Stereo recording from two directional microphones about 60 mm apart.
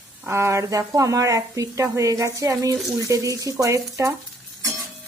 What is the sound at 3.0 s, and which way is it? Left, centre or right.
Speech, right.